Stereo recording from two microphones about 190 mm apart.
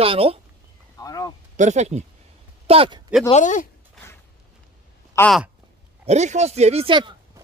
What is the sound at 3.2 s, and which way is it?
Speech, 40° left (ahead or behind).